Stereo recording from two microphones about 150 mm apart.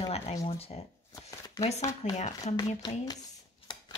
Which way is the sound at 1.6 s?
45° left (ahead or behind).